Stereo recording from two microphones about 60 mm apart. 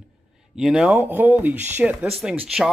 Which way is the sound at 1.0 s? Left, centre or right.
Right.